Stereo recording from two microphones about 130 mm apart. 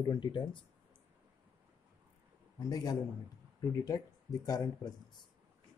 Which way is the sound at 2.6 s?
30° left (ahead or behind).